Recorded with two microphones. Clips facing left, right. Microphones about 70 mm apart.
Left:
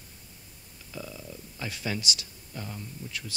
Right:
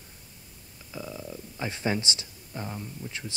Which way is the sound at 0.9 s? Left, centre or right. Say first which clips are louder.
Right 3 dB; centre.